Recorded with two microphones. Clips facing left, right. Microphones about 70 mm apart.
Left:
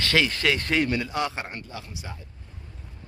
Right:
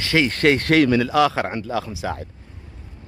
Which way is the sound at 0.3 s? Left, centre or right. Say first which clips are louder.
Right 8 dB; right.